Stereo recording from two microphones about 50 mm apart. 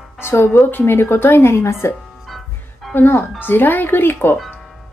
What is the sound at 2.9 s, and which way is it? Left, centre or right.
Speech, left.